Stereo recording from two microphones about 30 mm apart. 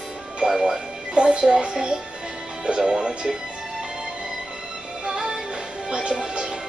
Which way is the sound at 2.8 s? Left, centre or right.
Right.